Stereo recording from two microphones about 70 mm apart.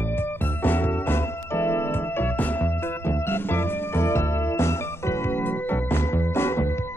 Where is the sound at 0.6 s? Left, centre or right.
Left.